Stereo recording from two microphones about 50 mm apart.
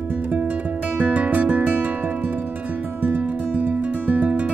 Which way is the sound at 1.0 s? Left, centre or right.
Right.